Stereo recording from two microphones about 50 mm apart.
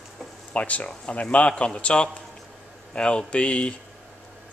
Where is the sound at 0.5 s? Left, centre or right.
Left.